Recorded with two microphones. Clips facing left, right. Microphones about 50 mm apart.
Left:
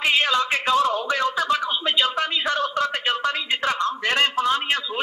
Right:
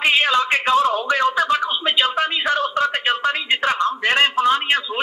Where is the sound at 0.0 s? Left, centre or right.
Right.